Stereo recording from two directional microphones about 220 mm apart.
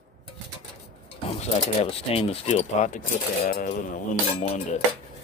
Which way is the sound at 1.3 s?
25° left (ahead or behind).